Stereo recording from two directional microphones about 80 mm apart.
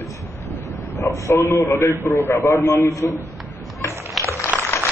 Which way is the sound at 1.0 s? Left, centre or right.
Left.